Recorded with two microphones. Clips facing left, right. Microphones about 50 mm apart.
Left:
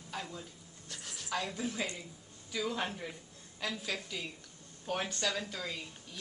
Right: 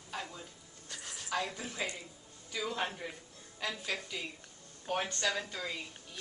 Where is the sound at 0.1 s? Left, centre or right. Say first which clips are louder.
Even; centre.